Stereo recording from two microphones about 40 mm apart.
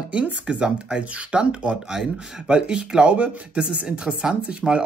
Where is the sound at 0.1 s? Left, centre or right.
Right.